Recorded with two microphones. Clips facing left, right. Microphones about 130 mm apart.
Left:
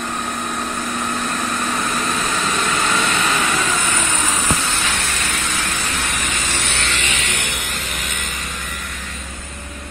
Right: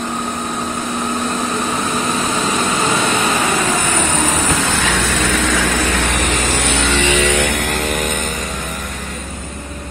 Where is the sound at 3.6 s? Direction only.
40° right (ahead or behind).